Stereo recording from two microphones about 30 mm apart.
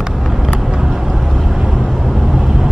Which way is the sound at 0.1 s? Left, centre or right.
Centre.